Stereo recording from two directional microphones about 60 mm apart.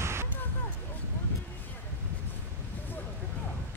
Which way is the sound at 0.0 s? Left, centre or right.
Right.